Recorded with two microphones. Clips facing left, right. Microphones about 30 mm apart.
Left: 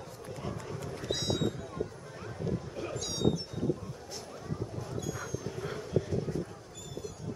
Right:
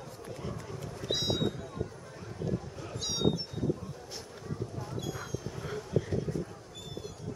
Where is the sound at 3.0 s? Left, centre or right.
Right.